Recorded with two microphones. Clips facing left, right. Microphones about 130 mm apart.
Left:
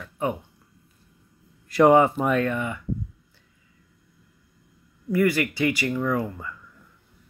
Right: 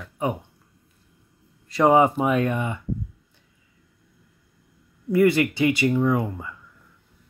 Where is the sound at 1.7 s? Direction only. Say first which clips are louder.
Left 1 dB; centre (ahead or behind); by 2.8 s 20° right (ahead or behind).